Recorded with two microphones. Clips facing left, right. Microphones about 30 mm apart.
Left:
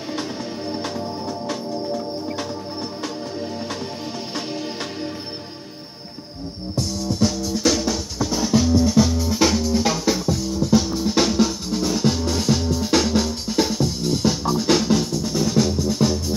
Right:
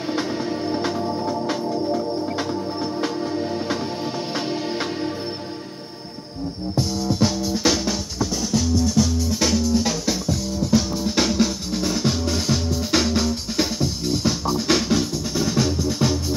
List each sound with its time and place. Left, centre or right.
6.7 s music: centre
8.2 s music: centre